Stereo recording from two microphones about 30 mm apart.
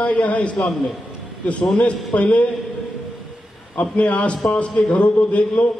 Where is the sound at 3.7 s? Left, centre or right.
Left.